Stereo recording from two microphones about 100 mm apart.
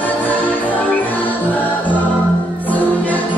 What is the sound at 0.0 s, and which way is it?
Music, 15° left (ahead or behind).